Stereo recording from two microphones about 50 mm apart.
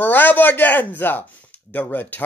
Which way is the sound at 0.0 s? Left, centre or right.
Left.